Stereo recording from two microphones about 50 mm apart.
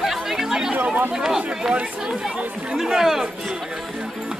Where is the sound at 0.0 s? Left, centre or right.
Centre.